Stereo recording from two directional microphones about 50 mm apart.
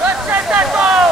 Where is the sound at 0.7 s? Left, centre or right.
Centre.